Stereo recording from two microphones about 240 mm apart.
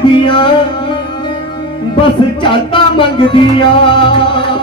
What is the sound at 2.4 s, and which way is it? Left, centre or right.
Music, left.